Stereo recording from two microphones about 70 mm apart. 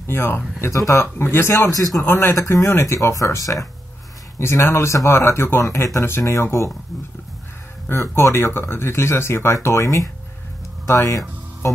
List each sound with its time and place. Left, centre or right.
0.0 s speech: left
0.6 s speech: left
1.1 s speech: left
2.0 s speech: left
4.4 s speech: left
7.9 s speech: left